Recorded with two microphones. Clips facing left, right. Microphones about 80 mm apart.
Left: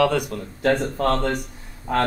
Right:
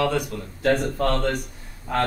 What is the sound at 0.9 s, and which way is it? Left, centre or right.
Speech, left.